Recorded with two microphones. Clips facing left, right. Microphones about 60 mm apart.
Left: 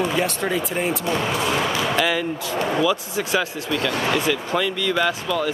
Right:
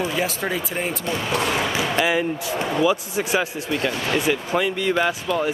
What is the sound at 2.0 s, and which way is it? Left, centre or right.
Speech, right.